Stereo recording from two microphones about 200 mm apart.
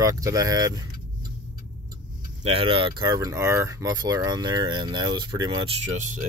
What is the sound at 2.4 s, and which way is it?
Speech, 30° right (ahead or behind).